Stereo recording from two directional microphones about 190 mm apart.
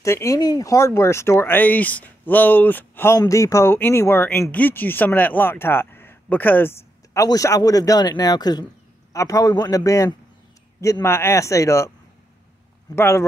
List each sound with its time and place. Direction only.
0.0 s speech: 15° left (ahead or behind)
12.9 s speech: 15° left (ahead or behind)